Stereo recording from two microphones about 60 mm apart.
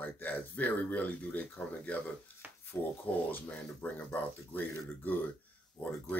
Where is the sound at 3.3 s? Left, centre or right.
Left.